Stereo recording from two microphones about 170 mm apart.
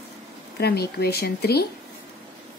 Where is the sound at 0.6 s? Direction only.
70° left (ahead or behind).